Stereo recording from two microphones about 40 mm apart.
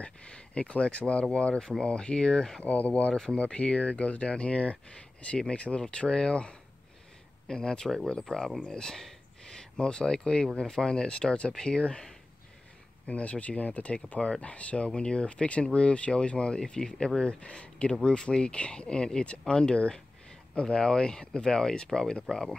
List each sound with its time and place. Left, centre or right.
0.0 s speech: left
2.6 s speech: left; by 12.2 s centre
13.0 s speech: left; by 22.6 s centre